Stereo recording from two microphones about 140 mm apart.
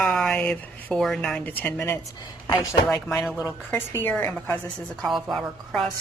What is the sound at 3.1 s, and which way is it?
Speech, centre (ahead or behind).